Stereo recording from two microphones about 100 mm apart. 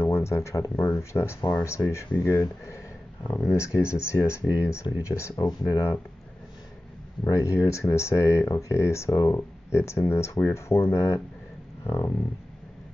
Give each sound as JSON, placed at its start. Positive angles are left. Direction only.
{"t": 0.0, "sound": "speech", "side_deg": 25}
{"t": 7.2, "sound": "speech", "side_deg": 30}